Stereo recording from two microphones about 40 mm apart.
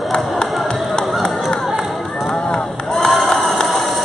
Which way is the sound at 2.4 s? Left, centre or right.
Left.